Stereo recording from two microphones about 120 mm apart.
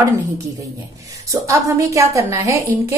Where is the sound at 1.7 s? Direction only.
25° right (ahead or behind).